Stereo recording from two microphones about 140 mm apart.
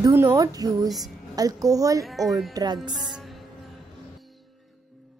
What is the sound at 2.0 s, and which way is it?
Speech, centre (ahead or behind).